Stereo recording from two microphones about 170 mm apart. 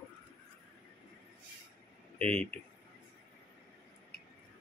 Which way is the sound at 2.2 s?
10° left (ahead or behind).